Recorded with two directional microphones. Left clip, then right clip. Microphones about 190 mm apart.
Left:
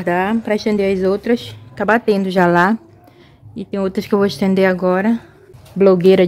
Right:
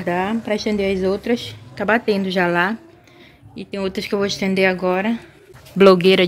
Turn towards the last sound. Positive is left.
turn(degrees=15)  # may be behind; listen again after turning